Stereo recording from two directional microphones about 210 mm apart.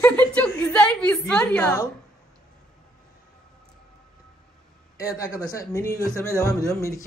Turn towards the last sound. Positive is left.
turn(degrees=15)  # may be behind; listen again after turning